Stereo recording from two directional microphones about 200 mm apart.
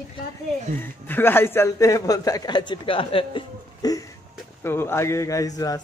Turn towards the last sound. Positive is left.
turn(degrees=20)  # may be behind; listen again after turning